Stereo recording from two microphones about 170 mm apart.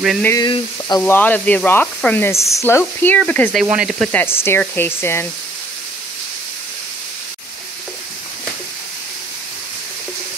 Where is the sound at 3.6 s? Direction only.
5° right (ahead or behind).